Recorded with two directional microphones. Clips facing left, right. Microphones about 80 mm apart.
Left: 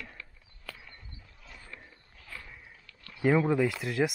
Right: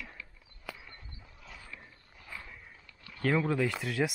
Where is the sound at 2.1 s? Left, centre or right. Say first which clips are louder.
Even; centre.